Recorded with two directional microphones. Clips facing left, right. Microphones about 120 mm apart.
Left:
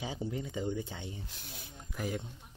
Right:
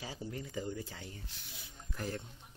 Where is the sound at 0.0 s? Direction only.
20° left (ahead or behind).